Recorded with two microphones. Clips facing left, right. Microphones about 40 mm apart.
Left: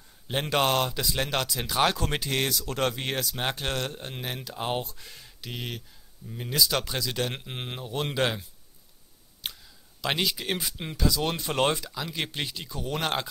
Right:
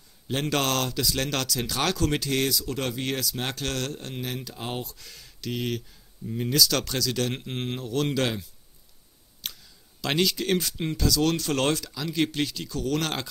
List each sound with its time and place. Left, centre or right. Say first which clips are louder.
0.3 s a man's voice: left 1 dB; centre
2.5 s speech: left 1 dB; left
3.3 s a man's voice: left 1 dB; left
5.5 s speech: right 7 dB; centre
6.5 s speech: right 1 dB; centre
7.9 s a man's voice: right 1 dB; left
9.4 s a sound: left 1 dB; centre
10.0 s a man's voice: right 3 dB; centre